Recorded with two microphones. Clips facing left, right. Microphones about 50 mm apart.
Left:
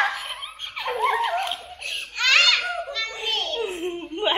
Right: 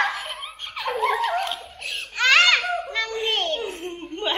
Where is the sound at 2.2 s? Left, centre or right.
Centre.